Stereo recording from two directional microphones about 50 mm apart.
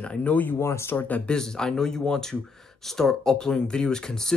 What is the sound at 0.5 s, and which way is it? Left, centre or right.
Speech, left.